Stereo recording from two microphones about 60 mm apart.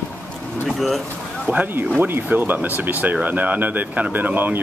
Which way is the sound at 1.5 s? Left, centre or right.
Right.